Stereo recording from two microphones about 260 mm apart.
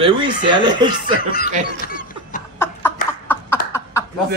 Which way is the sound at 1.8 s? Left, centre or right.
Left.